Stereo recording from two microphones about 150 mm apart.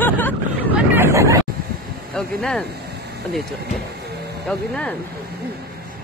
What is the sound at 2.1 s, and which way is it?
Speech, 5° left (ahead or behind).